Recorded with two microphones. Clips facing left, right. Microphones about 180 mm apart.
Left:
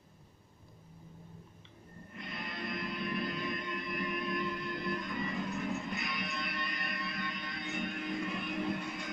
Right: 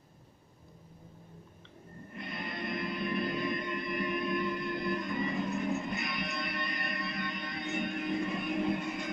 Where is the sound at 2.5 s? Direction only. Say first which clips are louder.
Right 3 dB; 20° right (ahead or behind).